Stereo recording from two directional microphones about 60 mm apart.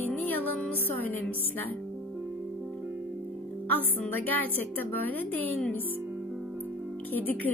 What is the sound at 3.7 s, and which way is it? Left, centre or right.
Speech, left.